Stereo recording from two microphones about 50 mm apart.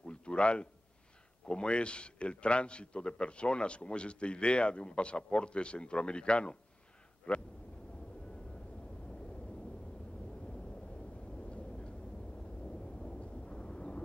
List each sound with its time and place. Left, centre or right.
0.0 s a sound: centre
1.5 s a man's voice: left
11.4 s vehicle: left
13.0 s thunder: centre